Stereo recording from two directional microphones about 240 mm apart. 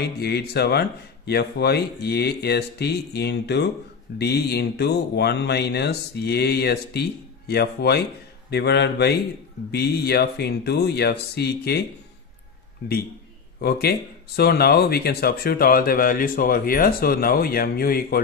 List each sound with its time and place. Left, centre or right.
0.2 s speech: left
13.6 s speech: left